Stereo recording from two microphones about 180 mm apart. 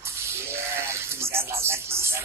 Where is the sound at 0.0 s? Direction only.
15° right (ahead or behind).